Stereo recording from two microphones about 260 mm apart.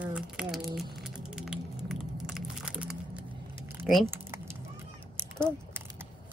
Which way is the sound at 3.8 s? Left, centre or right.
Centre.